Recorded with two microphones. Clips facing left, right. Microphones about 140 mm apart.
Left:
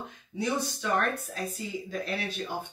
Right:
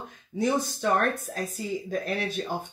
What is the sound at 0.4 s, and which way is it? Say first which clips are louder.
Speech: right 5 dB; 45° right (ahead or behind).